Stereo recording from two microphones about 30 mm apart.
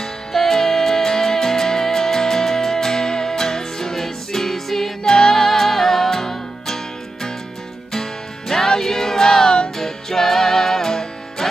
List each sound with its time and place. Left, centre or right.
0.0 s music: centre
7.9 s music: centre